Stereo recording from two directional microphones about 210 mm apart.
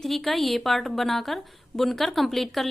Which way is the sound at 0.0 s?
Centre (ahead or behind).